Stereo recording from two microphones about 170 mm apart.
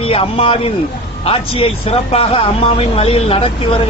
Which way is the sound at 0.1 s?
35° left (ahead or behind).